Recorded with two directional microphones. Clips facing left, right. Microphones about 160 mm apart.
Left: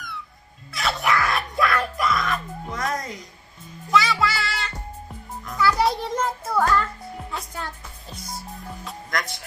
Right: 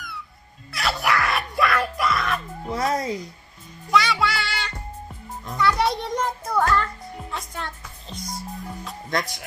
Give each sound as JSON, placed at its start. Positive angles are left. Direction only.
{"t": 0.7, "sound": "music", "side_deg": 0}
{"t": 2.7, "sound": "speech", "side_deg": -30}
{"t": 3.9, "sound": "music", "side_deg": 0}